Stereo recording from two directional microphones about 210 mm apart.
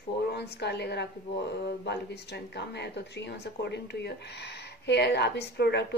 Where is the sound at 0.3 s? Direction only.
50° left (ahead or behind).